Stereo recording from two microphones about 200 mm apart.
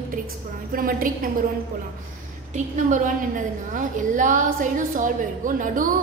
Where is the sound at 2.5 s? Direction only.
40° right (ahead or behind).